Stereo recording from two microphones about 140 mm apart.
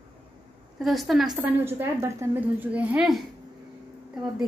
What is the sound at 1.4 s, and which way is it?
A woman's voice, 15° right (ahead or behind).